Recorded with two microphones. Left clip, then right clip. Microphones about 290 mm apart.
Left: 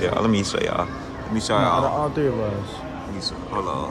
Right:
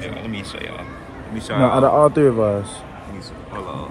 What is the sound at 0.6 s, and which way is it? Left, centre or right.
Speech, left.